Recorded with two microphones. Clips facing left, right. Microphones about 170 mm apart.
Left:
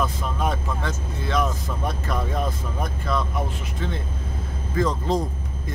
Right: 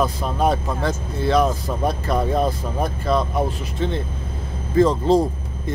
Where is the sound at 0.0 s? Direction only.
35° right (ahead or behind).